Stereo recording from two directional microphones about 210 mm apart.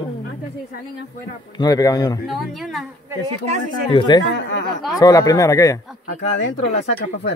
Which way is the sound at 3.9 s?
25° left (ahead or behind).